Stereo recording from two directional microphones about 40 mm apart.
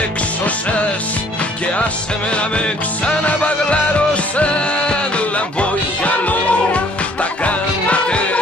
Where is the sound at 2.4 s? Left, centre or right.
Left.